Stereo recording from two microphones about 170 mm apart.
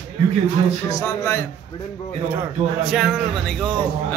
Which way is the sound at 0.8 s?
20° left (ahead or behind).